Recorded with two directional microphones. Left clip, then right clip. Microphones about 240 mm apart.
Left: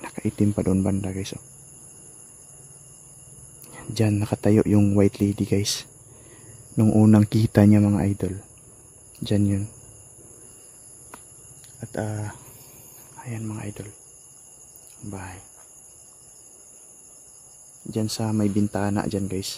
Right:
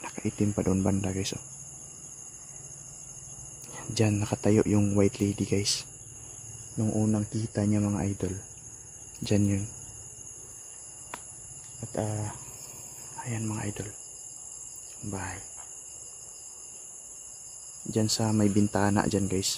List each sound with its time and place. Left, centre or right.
0.0 s speech: centre
3.7 s speech: centre
6.8 s speech: left; by 9.6 s centre
11.8 s speech: centre
15.0 s speech: centre
17.8 s speech: centre